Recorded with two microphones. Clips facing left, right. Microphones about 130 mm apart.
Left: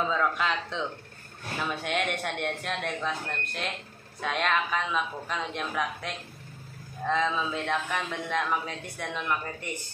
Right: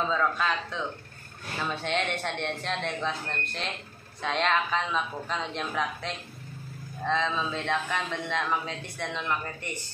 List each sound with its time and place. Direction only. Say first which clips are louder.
0.1 s speech: even; 15° left (ahead or behind)
1.6 s speech: even; 10° left (ahead or behind)